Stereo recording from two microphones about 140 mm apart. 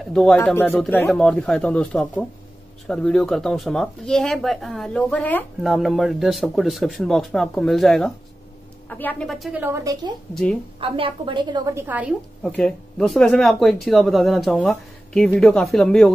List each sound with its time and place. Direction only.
0.0 s a woman's voice: 5° left (ahead or behind)
5.6 s a woman's voice: centre (ahead or behind)
9.3 s a woman's voice: centre (ahead or behind)
9.6 s a woman's voice: 15° right (ahead or behind)
10.3 s a woman's voice: 5° left (ahead or behind)
10.8 s a woman's voice: 40° right (ahead or behind)
11.7 s a woman's voice: 15° right (ahead or behind); by 16.1 s 5° left (ahead or behind)